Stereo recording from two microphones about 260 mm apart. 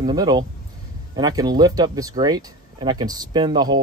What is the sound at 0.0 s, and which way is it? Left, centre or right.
Speech, centre.